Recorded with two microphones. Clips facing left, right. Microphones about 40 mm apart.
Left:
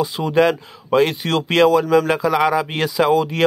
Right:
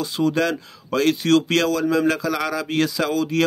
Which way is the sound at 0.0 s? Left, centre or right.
Centre.